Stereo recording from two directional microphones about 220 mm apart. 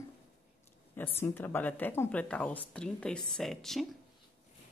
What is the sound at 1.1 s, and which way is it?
Speech, 10° left (ahead or behind).